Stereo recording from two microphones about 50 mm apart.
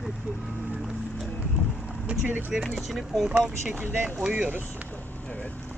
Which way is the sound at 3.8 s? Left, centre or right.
Right.